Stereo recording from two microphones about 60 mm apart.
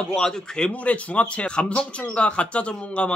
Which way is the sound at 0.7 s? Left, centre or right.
Left.